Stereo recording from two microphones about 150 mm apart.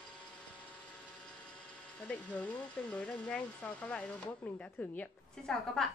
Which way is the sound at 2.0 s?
10° left (ahead or behind).